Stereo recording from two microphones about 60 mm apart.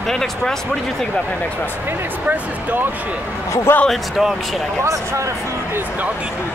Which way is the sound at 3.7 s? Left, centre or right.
Left.